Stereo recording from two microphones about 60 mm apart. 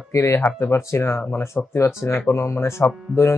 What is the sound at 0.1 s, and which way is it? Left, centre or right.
Speech, left.